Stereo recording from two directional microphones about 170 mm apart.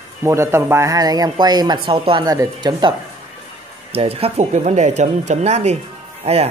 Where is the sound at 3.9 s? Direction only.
35° right (ahead or behind).